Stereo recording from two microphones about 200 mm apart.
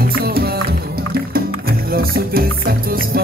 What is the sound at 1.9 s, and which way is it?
Music, 50° right (ahead or behind).